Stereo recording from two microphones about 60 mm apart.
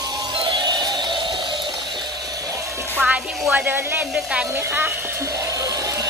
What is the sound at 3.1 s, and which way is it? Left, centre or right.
Speech, right.